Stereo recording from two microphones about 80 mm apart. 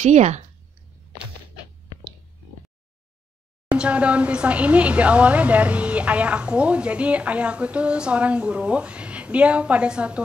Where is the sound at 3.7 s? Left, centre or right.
Centre.